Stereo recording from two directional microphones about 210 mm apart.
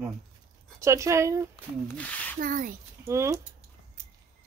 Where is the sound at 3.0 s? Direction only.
15° right (ahead or behind).